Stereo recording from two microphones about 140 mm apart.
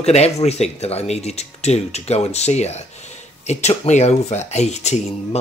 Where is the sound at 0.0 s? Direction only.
50° left (ahead or behind).